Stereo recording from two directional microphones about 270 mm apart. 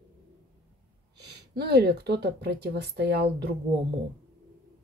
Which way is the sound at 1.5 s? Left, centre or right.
Right.